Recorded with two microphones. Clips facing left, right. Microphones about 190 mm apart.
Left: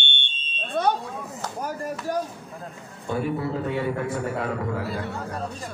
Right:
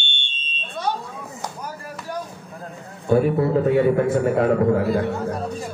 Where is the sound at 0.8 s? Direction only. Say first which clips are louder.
Left 3 dB; 55° left (ahead or behind).